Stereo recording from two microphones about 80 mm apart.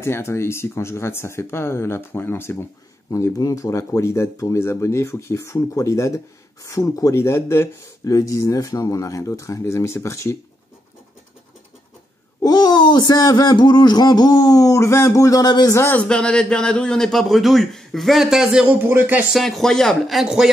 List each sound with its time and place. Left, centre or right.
0.0 s speech: left
3.1 s speech: left
7.2 s speech: left
12.4 s a sound: left
15.9 s a man's voice: centre
18.7 s a sound: right
19.3 s a man's voice: centre